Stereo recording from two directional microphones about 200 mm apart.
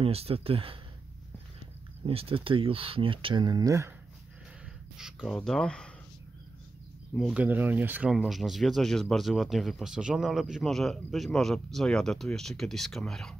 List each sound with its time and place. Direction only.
0.0 s speech: 30° right (ahead or behind)
2.0 s speech: 30° right (ahead or behind)
4.9 s speech: centre (ahead or behind)
7.2 s speech: 5° right (ahead or behind)